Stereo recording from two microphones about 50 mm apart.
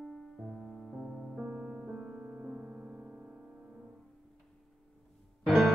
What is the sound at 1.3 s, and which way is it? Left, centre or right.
Music, centre.